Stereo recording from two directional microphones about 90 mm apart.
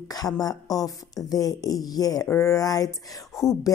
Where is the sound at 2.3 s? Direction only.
35° left (ahead or behind).